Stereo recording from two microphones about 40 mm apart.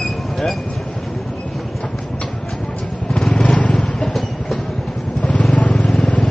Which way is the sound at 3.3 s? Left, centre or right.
Left.